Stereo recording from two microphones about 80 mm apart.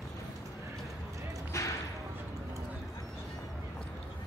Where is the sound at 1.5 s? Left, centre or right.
Left.